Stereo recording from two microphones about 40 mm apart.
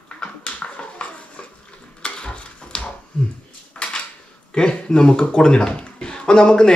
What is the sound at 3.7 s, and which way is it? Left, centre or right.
Dishes, left.